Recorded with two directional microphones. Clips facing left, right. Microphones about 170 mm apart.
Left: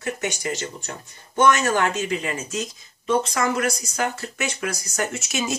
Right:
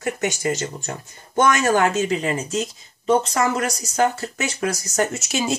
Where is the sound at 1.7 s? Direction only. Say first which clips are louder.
Right 4 dB; 40° right (ahead or behind).